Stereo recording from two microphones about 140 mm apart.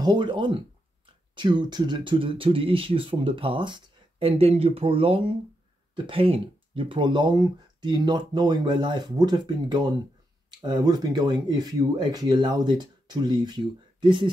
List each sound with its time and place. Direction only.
0.0 s speech: 35° right (ahead or behind)